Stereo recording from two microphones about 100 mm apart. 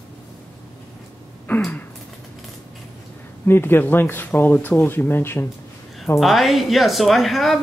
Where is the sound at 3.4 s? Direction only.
20° left (ahead or behind).